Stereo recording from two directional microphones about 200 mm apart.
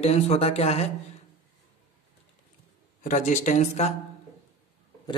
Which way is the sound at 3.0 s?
40° left (ahead or behind).